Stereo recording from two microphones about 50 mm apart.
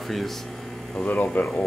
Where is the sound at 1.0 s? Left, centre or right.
Centre.